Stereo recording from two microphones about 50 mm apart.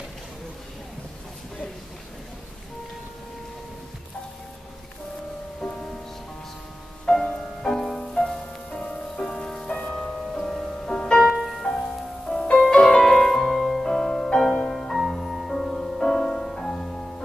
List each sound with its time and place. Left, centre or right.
7.2 s music: centre
11.3 s music: centre
13.9 s music: centre